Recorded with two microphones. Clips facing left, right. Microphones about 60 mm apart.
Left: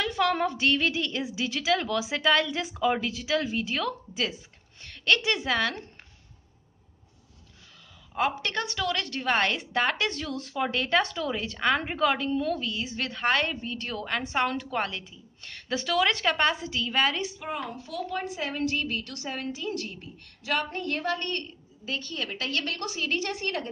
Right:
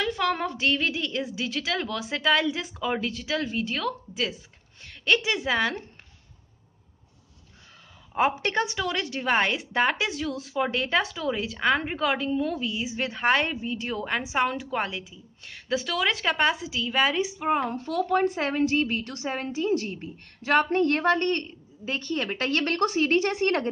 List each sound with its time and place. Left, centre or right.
0.0 s a woman's voice: centre
8.1 s a woman's voice: centre
17.5 s a woman's voice: right
18.6 s a woman's voice: right